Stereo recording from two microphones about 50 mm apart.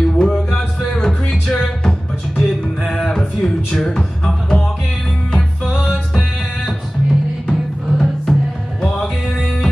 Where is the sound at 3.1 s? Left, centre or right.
Centre.